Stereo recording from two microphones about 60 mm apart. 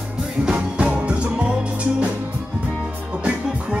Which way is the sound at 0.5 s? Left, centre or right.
Centre.